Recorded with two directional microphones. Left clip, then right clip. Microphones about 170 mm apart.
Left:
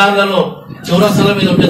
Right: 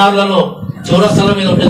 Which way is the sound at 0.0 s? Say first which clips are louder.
Right 1 dB; 20° right (ahead or behind).